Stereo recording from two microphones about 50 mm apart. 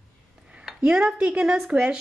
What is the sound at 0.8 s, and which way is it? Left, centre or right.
Speech, centre.